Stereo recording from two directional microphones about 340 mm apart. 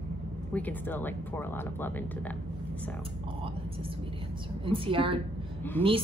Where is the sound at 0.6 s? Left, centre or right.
Centre.